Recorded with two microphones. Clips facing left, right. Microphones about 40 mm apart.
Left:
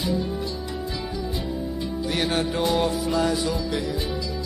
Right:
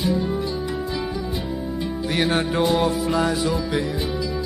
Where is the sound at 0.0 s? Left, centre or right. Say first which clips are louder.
Right 3 dB; centre.